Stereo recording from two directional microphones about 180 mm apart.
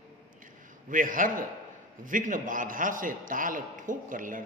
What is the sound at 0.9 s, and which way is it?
A man's voice, 50° right (ahead or behind).